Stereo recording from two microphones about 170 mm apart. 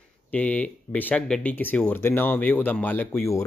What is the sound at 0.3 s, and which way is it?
Speech, 10° left (ahead or behind).